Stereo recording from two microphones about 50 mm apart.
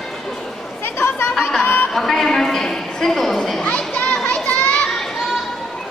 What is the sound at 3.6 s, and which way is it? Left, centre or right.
Children playing, left.